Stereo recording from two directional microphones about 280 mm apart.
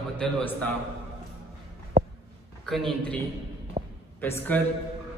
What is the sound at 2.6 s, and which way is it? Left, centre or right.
Speech, centre.